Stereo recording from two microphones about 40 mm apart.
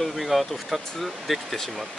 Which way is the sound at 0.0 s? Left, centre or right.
Centre.